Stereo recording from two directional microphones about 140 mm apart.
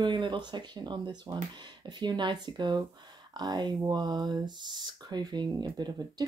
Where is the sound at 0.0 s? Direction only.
35° right (ahead or behind).